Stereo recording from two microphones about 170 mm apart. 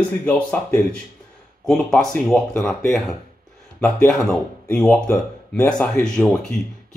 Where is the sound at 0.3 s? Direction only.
5° left (ahead or behind).